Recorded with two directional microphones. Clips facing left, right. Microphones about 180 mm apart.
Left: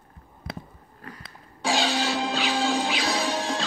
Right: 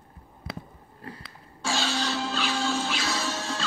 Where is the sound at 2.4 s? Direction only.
35° left (ahead or behind).